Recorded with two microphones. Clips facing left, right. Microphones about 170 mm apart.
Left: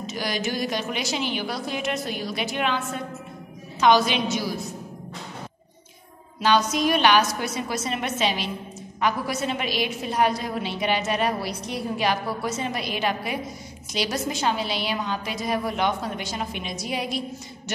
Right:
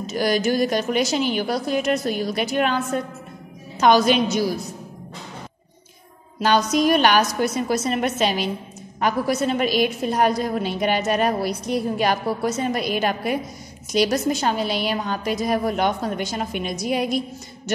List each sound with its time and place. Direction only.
0.1 s a woman's voice: 40° right (ahead or behind)
3.8 s a woman's voice: 45° right (ahead or behind)
6.4 s a woman's voice: 45° right (ahead or behind)